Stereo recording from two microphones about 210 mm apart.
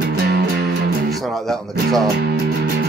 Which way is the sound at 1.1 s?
Centre (ahead or behind).